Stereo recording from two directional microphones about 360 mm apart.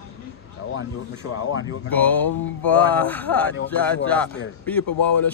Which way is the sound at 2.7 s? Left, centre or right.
Centre.